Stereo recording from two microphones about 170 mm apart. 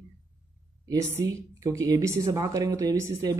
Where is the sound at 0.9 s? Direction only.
20° right (ahead or behind).